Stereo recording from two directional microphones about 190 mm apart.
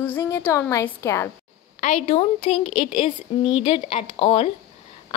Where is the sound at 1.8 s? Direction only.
35° left (ahead or behind).